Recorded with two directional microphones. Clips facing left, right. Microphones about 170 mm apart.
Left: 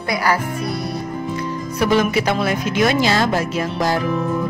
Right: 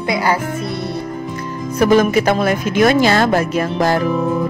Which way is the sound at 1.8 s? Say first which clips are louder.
Right 5 dB; 45° right (ahead or behind).